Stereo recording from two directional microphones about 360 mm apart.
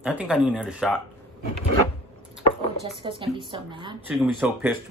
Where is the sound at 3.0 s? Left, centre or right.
Centre.